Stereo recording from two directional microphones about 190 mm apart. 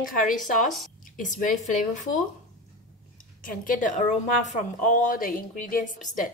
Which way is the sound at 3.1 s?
45° left (ahead or behind).